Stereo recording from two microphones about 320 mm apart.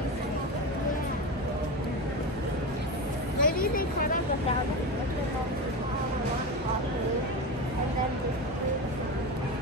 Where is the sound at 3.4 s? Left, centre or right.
Left.